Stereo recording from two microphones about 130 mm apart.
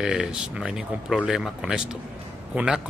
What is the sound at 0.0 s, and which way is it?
A man's voice, 5° right (ahead or behind).